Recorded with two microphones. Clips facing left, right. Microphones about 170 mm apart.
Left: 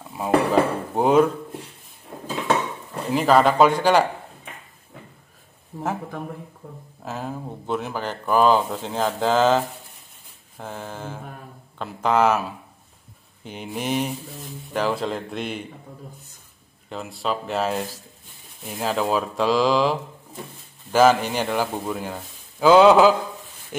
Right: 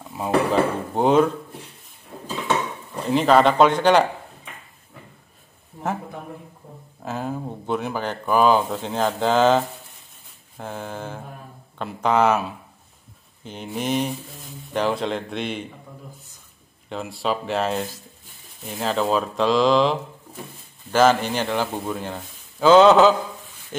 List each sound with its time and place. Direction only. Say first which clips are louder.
0.1 s a man's voice: left 1 dB; 5° left (ahead or behind)
3.1 s speech: right 1 dB; 5° left (ahead or behind)
5.7 s speech: left 2 dB; 45° left (ahead or behind)
7.1 s speech: right 3 dB; centre (ahead or behind)
10.6 s a man's voice: right 2 dB; centre (ahead or behind)
16.9 s a man's voice: right 2 dB; centre (ahead or behind)